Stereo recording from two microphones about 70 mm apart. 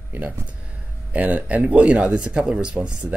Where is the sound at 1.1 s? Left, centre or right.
Right.